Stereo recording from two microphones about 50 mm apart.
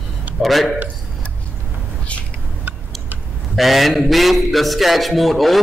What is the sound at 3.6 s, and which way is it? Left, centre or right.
Speech, centre.